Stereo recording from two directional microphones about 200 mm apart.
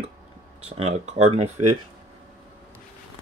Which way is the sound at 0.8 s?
35° right (ahead or behind).